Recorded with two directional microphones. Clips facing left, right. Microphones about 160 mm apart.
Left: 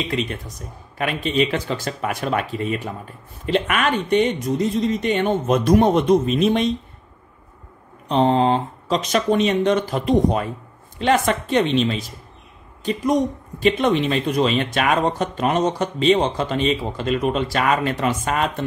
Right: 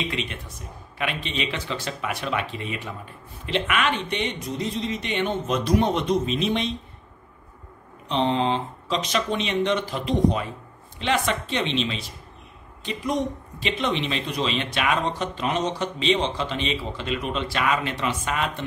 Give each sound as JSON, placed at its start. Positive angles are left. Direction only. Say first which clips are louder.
{"t": 0.1, "sound": "speech", "louder": "left 6 dB", "side_deg": 40}
{"t": 8.1, "sound": "speech", "louder": "left 6 dB", "side_deg": 45}